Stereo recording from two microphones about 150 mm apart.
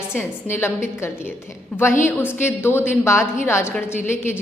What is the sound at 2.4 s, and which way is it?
A woman's voice, 15° left (ahead or behind).